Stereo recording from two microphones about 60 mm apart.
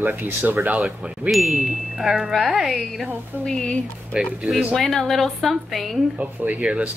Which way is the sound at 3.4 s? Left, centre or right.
Centre.